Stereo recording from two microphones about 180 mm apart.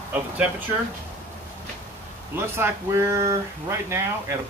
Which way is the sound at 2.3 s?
15° right (ahead or behind).